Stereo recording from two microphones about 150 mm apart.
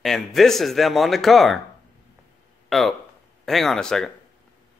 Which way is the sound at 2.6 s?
Centre (ahead or behind).